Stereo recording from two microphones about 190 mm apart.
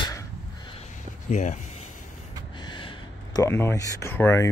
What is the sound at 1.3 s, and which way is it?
Speech, 40° left (ahead or behind).